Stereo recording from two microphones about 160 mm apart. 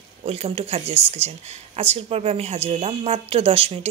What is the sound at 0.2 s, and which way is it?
Speech, 40° right (ahead or behind).